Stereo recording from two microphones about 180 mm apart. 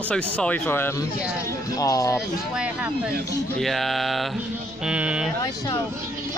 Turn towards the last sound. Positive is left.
turn(degrees=-5)  # may be behind; listen again after turning